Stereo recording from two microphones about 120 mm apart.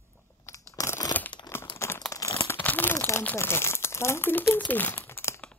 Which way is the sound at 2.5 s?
15° left (ahead or behind).